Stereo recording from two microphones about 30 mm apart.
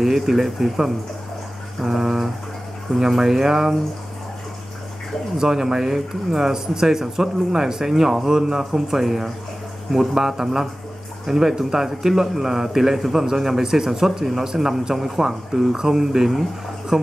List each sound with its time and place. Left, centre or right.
0.0 s a man's voice: centre
5.4 s a man's voice: centre
8.3 s a man's voice: right